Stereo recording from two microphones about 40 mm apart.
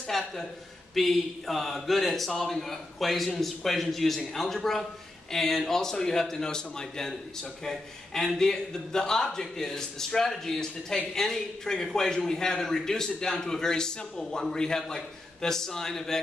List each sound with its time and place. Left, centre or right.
0.1 s a man's voice: centre